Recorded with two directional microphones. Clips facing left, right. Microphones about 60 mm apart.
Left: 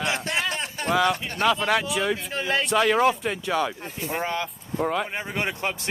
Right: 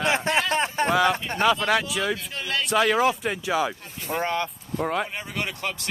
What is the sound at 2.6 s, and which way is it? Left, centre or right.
Speech, centre.